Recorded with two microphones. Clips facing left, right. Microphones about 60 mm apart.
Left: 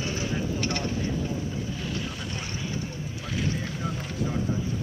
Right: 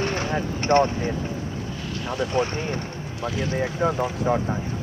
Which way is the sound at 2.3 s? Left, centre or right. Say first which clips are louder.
Right 10 dB; right.